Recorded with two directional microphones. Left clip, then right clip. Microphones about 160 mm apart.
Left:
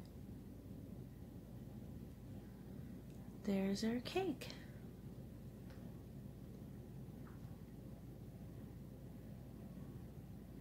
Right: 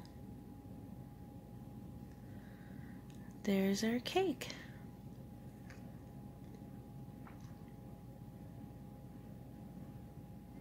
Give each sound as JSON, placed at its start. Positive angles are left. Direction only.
{"t": 3.4, "sound": "a woman's voice", "side_deg": -35}